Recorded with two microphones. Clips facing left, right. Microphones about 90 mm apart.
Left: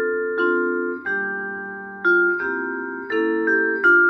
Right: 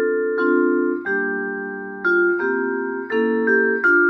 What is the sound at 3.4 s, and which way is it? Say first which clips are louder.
Music: right 1 dB; 10° right (ahead or behind).